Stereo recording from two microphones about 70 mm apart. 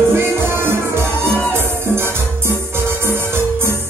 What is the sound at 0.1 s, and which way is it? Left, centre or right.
Music, right.